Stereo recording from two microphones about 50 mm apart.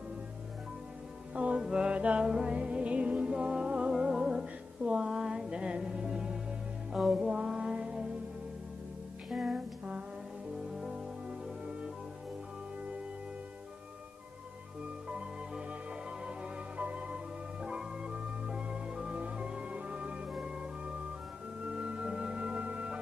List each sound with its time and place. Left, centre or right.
1.3 s music: right
9.3 s music: centre
10.7 s music: centre
15.0 s music: centre